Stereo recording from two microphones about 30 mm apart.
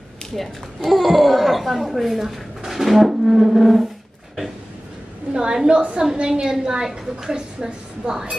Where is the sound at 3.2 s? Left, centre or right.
Centre.